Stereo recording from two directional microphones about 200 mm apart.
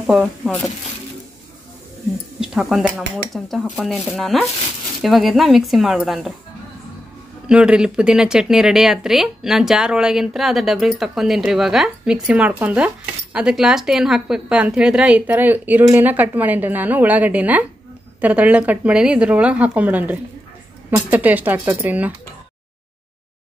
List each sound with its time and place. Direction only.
0.0 s speech: 5° right (ahead or behind)
2.4 s speech: 5° right (ahead or behind)
7.4 s speech: 5° right (ahead or behind)